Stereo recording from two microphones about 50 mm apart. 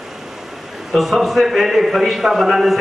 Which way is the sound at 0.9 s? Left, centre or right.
Centre.